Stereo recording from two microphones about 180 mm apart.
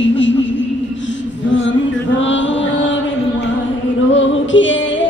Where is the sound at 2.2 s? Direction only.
90° left.